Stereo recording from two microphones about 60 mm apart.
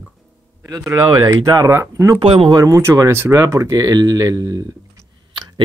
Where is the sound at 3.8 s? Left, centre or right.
Right.